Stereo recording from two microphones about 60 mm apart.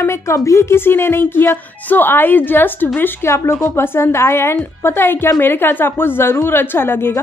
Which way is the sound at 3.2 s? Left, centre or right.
Left.